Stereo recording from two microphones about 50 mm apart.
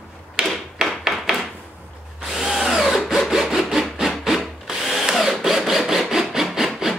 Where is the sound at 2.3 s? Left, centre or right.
Centre.